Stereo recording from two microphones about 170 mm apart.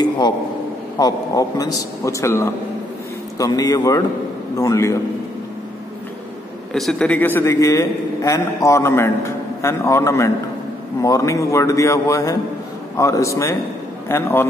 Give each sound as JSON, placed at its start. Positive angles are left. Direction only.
{"t": 0.9, "sound": "a man's voice", "side_deg": 20}
{"t": 6.7, "sound": "a man's voice", "side_deg": 5}